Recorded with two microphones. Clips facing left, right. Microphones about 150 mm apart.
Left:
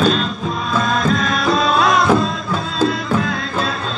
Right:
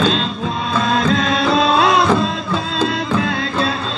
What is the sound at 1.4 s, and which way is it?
Music, 25° right (ahead or behind).